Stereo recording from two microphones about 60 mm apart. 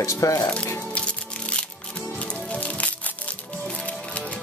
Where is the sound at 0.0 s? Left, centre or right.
Left.